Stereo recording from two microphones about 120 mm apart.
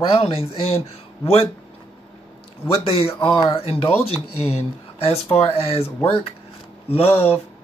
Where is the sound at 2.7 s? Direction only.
55° left (ahead or behind).